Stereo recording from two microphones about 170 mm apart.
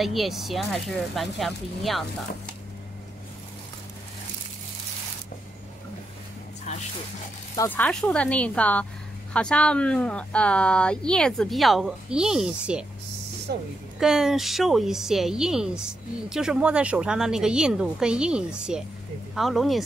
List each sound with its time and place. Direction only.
0.0 s speech: centre (ahead or behind)
6.7 s a sound: 40° left (ahead or behind)
7.5 s speech: 10° left (ahead or behind); by 12.8 s 5° right (ahead or behind)
13.5 s a woman's voice: 70° right (ahead or behind)
13.9 s speech: 5° right (ahead or behind)